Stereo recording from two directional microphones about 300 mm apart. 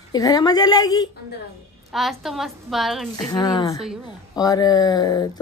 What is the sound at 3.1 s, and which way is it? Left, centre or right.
A woman's voice, centre.